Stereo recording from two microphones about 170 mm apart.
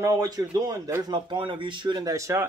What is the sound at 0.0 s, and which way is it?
Speech, 20° right (ahead or behind).